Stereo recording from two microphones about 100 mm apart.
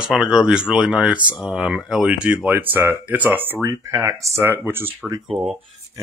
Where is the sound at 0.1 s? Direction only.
5° right (ahead or behind); by 4.8 s 20° right (ahead or behind).